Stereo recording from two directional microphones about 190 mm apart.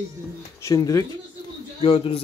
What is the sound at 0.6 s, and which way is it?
Speech, 20° left (ahead or behind).